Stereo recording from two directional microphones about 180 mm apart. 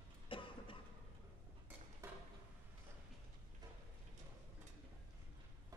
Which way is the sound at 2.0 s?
15° right (ahead or behind).